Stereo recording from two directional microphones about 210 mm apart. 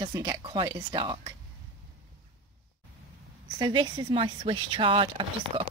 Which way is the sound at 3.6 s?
20° right (ahead or behind).